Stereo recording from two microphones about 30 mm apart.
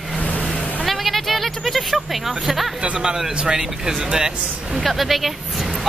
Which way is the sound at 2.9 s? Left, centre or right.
Right.